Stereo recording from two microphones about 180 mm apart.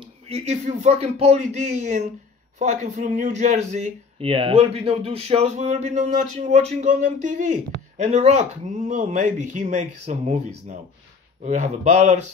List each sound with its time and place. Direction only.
0.0 s speech: 35° right (ahead or behind)